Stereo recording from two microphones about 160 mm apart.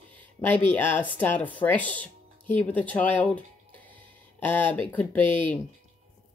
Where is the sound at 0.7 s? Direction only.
15° left (ahead or behind).